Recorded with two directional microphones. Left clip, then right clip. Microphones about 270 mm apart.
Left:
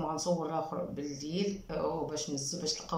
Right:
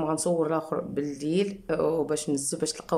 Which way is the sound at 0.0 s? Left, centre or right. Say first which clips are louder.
Right 7 dB; right.